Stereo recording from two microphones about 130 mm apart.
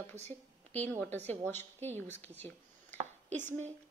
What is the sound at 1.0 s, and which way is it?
A woman's voice, 15° left (ahead or behind).